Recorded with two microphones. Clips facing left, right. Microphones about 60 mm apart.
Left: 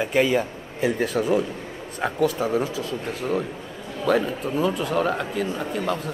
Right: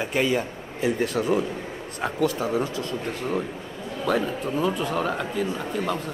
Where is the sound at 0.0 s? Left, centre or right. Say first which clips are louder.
Left 3 dB; centre.